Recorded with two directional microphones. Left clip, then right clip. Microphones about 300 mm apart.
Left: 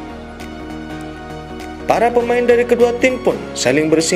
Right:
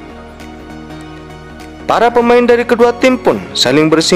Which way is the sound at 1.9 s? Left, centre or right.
Centre.